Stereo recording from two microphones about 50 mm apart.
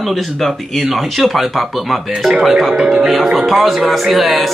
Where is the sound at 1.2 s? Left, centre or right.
Centre.